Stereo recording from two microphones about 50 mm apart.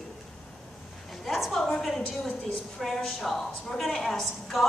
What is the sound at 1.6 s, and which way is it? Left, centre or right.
A woman's voice, centre.